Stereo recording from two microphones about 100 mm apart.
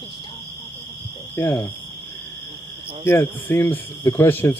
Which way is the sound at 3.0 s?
20° left (ahead or behind).